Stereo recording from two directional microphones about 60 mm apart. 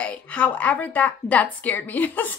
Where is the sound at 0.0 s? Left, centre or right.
Left.